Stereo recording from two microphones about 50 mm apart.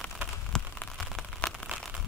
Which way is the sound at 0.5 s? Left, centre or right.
Centre.